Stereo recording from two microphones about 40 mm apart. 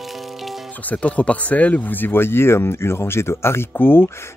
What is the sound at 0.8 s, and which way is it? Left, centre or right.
Speech, left.